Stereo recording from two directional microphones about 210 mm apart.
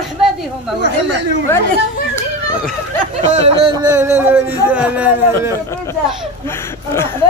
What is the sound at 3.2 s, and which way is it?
Speech, 25° right (ahead or behind).